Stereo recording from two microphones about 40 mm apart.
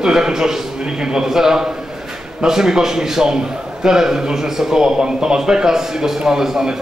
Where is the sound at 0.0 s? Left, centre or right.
Centre.